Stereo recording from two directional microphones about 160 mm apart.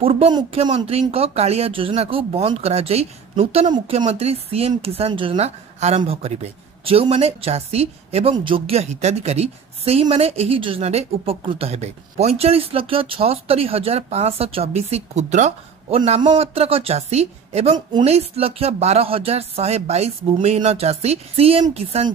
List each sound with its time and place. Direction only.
0.0 s a woman's voice: 35° right (ahead or behind)
16.2 s a woman's voice: 35° right (ahead or behind)